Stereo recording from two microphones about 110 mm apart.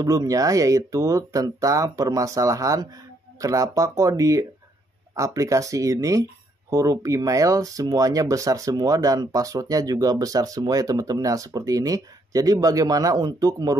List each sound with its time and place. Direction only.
0.0 s speech: 30° right (ahead or behind)